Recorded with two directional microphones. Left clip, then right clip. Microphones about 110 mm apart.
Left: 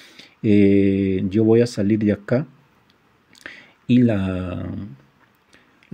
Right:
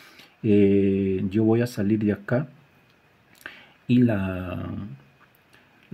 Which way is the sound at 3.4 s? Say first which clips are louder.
Left 4 dB; 30° left (ahead or behind).